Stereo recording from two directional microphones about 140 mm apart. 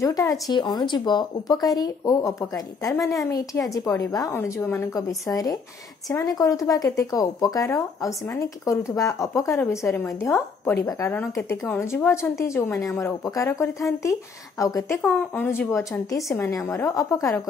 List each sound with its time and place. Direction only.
0.0 s speech: 25° left (ahead or behind)
15.0 s speech: 10° left (ahead or behind)